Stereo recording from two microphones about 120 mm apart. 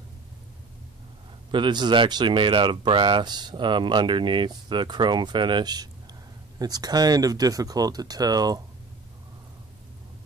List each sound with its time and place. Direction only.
1.5 s speech: 40° right (ahead or behind)